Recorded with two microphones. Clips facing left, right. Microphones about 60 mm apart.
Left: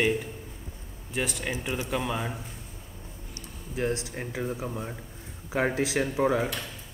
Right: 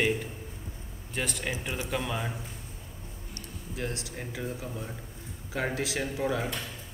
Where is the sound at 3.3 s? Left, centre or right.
Left.